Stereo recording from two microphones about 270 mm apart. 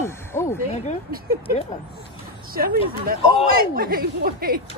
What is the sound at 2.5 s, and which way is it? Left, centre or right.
Speech, right.